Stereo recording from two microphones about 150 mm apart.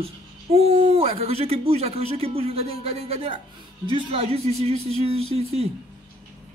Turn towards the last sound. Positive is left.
turn(degrees=-40)  # may be behind; listen again after turning